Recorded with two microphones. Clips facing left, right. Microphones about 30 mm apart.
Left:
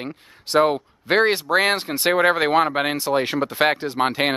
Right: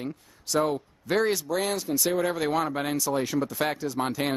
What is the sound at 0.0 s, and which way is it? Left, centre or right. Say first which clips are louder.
Speech: left 3 dB; left.